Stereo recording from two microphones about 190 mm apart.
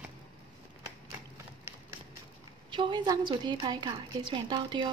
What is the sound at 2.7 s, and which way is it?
A woman's voice, 25° right (ahead or behind).